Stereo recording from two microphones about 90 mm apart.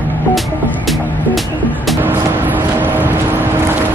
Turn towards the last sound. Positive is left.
turn(degrees=-20)  # may be behind; listen again after turning